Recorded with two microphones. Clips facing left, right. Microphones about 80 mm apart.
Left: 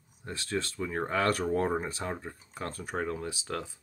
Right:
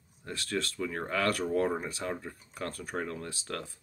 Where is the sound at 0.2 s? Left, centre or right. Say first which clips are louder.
Even; left.